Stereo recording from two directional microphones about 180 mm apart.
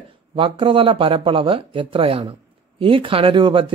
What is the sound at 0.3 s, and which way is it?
Speech, 30° right (ahead or behind).